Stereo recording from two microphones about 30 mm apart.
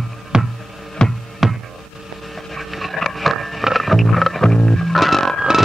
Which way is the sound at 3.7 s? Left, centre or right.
Centre.